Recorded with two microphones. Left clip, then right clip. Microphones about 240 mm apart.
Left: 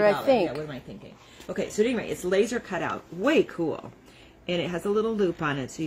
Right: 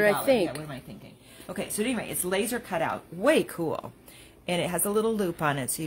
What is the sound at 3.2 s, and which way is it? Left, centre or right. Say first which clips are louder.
Speech: even; right.